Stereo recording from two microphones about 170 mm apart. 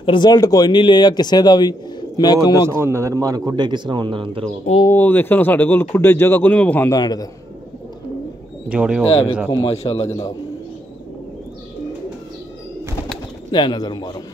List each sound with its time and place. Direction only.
0.0 s speech: 25° left (ahead or behind)
2.8 s speech: 15° right (ahead or behind)
4.8 s speech: 10° left (ahead or behind)
6.9 s speech: 20° left (ahead or behind)
8.6 s speech: 5° right (ahead or behind)
9.5 s a man's voice: 35° left (ahead or behind)
10.0 s speech: 20° left (ahead or behind)
13.5 s speech: 25° left (ahead or behind)